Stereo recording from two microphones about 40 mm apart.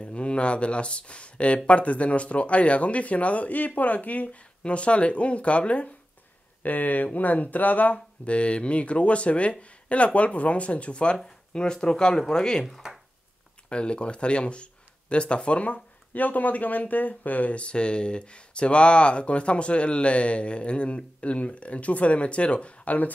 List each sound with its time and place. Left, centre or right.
0.0 s speech: left
6.6 s speech: left
8.3 s speech: left
12.8 s a sound: centre
13.7 s speech: left